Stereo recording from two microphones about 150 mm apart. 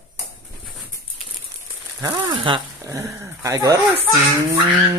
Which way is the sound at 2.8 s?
20° right (ahead or behind).